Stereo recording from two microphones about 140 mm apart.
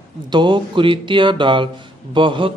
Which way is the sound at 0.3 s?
35° right (ahead or behind).